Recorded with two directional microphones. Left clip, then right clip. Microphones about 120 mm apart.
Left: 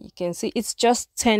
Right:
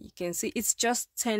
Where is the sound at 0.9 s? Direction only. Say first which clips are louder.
Left 9 dB; 50° left (ahead or behind).